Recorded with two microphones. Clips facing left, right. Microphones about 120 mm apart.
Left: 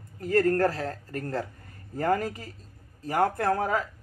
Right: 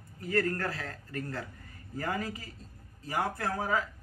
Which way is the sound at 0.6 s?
40° left (ahead or behind).